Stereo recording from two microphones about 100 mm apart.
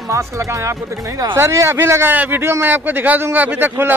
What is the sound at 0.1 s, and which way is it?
A man's voice, 30° right (ahead or behind).